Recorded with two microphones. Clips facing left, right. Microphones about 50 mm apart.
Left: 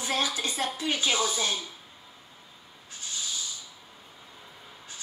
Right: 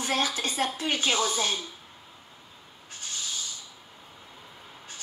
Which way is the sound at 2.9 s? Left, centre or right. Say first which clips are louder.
Even; right.